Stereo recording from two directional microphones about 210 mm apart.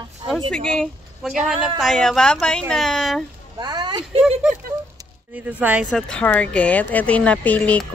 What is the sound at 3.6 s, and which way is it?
Speech, 20° right (ahead or behind).